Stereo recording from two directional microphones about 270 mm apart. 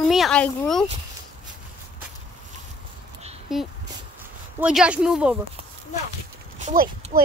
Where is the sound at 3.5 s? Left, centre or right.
Centre.